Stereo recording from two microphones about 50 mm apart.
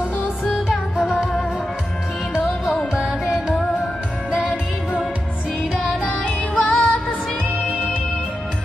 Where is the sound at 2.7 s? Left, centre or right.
Centre.